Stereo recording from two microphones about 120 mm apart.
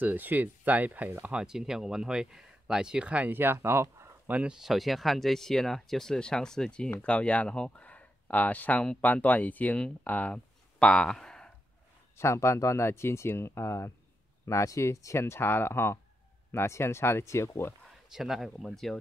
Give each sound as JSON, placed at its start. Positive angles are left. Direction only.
{"t": 0.0, "sound": "speech", "side_deg": -15}
{"t": 4.4, "sound": "speech", "side_deg": -5}
{"t": 12.2, "sound": "speech", "side_deg": 20}
{"t": 18.1, "sound": "speech", "side_deg": 0}